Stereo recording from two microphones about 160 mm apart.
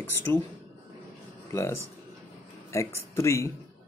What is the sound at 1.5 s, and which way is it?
Speech, 15° left (ahead or behind).